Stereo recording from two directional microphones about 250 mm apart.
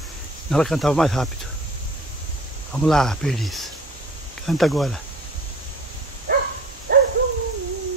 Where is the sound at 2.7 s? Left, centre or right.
Centre.